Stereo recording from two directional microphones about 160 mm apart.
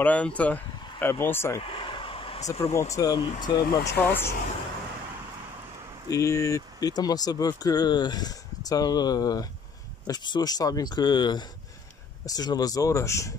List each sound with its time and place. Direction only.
0.0 s speech: 10° left (ahead or behind)
1.6 s a sound: 35° left (ahead or behind)
2.6 s speech: 20° left (ahead or behind)
4.1 s speech: 15° left (ahead or behind)
6.0 s speech: 20° left (ahead or behind)